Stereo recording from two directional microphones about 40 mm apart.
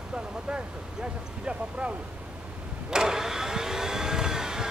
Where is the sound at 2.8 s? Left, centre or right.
Centre.